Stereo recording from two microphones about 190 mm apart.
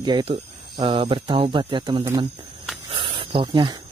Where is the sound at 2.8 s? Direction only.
25° right (ahead or behind).